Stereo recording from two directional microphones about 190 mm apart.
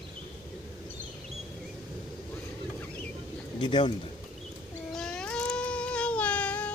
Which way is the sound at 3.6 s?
25° left (ahead or behind).